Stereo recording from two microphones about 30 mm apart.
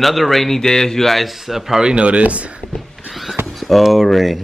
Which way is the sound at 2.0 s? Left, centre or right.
Right.